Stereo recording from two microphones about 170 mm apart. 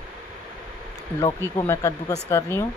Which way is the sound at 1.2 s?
15° left (ahead or behind).